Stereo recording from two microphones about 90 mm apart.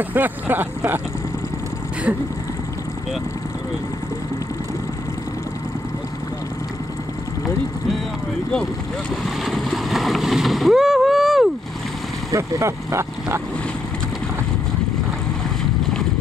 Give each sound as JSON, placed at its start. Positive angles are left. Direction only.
{"t": 0.1, "sound": "speech", "side_deg": -20}
{"t": 9.4, "sound": "speech", "side_deg": 0}
{"t": 12.3, "sound": "speech", "side_deg": -35}